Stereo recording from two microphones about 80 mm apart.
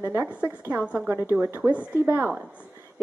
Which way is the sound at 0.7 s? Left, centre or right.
Centre.